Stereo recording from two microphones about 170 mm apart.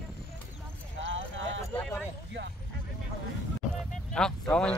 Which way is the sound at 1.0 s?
90° right.